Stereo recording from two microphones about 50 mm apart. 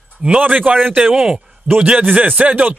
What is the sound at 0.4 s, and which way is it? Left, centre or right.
Speech, right.